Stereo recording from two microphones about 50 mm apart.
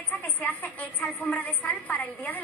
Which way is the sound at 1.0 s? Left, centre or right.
Left.